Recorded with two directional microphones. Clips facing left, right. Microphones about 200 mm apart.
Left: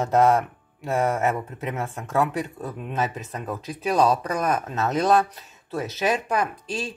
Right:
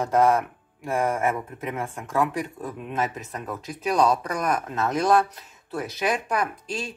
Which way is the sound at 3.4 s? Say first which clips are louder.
Left 1 dB; 25° left (ahead or behind).